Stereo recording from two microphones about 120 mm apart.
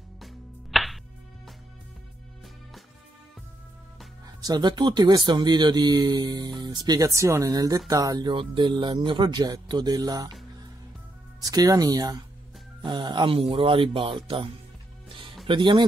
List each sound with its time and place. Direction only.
0.2 s music: centre (ahead or behind)
4.4 s speech: 35° right (ahead or behind)
11.4 s speech: 30° right (ahead or behind); by 14.5 s 45° right (ahead or behind)
15.0 s music: 45° right (ahead or behind)
15.4 s speech: 45° right (ahead or behind)